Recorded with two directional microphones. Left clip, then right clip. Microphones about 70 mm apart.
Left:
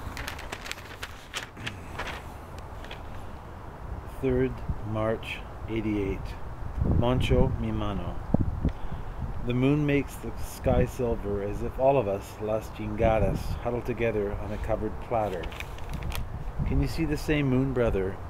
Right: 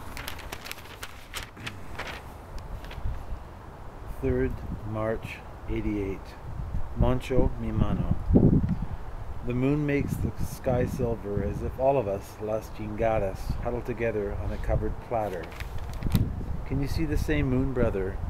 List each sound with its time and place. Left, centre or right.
0.1 s a sound: centre
4.2 s speech: centre
9.5 s speech: centre
16.6 s speech: centre